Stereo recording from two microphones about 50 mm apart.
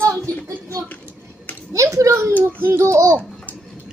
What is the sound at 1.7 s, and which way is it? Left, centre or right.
A child's voice, right.